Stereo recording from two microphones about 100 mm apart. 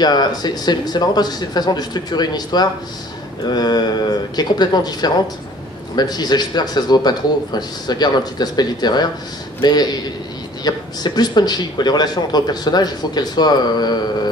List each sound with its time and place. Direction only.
0.0 s a man's voice: 45° left (ahead or behind)